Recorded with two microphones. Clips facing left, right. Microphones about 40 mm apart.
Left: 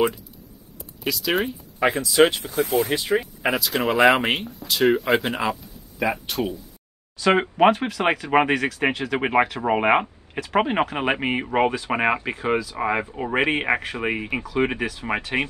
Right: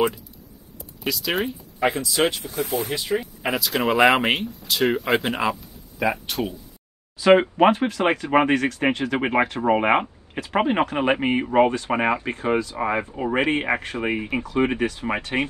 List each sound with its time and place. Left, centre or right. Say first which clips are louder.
1.0 s speech: left 1 dB; centre
2.2 s speech: left 3 dB; left
2.5 s speech: left 4 dB; left
3.2 s speech: left 2 dB; centre
14.7 s speech: right 3 dB; centre
15.3 s speech: even; centre